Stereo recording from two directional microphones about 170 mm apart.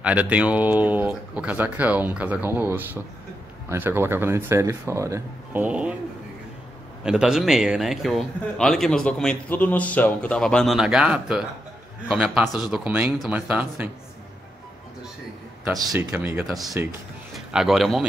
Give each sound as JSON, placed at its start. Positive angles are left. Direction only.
{"t": 0.0, "sound": "speech", "side_deg": -10}
{"t": 7.0, "sound": "a man's voice", "side_deg": -5}
{"t": 15.8, "sound": "speech", "side_deg": -20}
{"t": 16.1, "sound": "a man's voice", "side_deg": -10}